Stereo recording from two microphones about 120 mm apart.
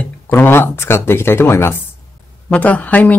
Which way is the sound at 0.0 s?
20° left (ahead or behind).